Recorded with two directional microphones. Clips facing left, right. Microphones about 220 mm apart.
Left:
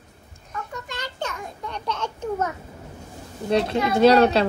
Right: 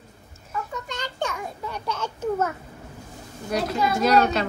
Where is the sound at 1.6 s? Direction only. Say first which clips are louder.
Left 2 dB; 5° right (ahead or behind).